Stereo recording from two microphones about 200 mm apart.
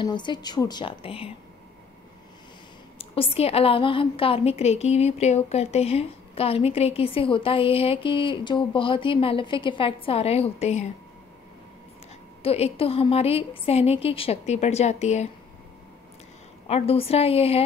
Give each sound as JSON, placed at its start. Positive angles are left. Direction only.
{"t": 0.0, "sound": "a woman's voice", "side_deg": 20}
{"t": 3.0, "sound": "a woman's voice", "side_deg": 30}
{"t": 12.4, "sound": "a woman's voice", "side_deg": 30}
{"t": 16.6, "sound": "a woman's voice", "side_deg": 30}